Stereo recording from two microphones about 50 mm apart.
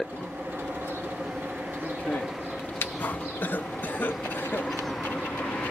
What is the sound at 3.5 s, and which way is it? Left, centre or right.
Cough, left.